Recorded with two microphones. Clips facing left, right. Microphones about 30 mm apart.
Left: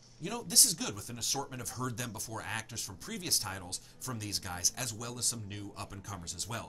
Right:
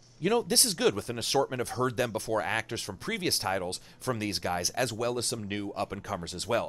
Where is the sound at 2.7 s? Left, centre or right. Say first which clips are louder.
Right 9 dB; right.